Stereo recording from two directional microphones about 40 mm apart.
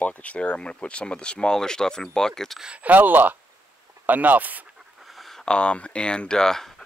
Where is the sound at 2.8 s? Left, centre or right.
Right.